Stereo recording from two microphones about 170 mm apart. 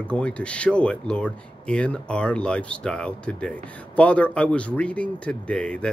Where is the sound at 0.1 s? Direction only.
5° left (ahead or behind).